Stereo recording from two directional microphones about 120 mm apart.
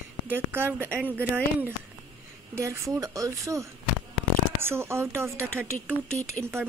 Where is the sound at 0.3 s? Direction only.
15° right (ahead or behind).